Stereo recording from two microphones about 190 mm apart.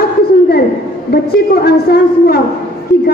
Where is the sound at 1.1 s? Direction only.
55° left (ahead or behind).